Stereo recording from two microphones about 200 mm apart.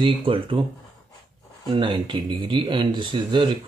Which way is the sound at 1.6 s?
25° right (ahead or behind).